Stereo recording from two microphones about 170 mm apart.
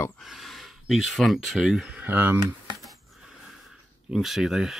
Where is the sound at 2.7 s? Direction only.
Centre (ahead or behind).